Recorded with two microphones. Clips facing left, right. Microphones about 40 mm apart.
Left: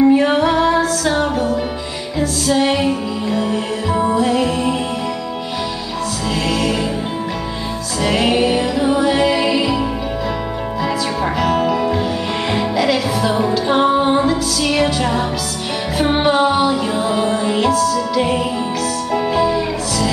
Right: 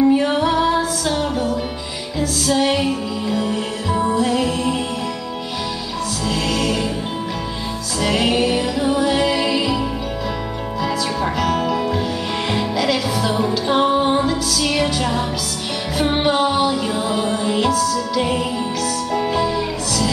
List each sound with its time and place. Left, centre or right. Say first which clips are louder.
0.0 s music: left 3 dB; centre
0.6 s music: left 3 dB; centre
6.2 s music: left 2 dB; centre
8.0 s music: left 2 dB; centre